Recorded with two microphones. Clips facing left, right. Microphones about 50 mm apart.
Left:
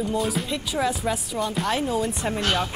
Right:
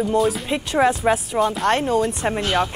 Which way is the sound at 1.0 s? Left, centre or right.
Right.